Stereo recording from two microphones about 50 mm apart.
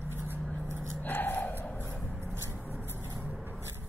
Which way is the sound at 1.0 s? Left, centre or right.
Left.